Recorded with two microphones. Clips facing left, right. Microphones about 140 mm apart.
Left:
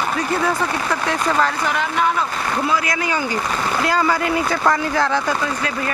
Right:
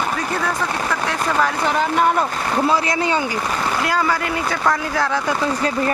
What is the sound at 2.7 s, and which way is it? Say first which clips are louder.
Speech: right 3 dB; 30° right (ahead or behind).